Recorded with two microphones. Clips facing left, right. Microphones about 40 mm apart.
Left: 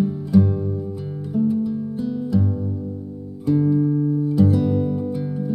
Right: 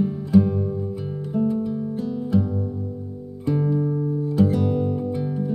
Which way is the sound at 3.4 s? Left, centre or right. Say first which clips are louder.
Left 4 dB; right.